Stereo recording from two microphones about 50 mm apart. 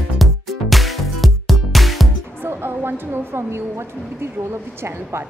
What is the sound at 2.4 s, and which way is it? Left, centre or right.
Speech, right.